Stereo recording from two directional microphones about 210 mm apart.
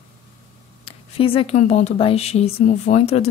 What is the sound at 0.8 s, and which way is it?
Speech, 25° left (ahead or behind).